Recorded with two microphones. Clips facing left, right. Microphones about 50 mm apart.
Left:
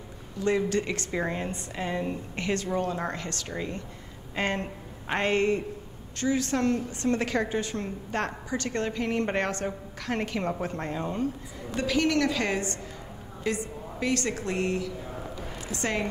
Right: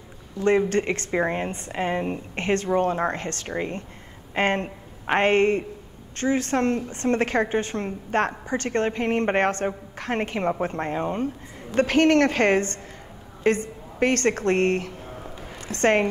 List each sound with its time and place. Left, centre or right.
0.4 s a woman's voice: right
11.7 s a woman's voice: right